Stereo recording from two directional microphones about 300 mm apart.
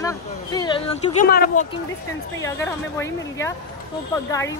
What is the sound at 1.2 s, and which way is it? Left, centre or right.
Speech, left.